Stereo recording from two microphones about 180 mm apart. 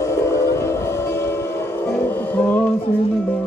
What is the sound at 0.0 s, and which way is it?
Train, 15° left (ahead or behind).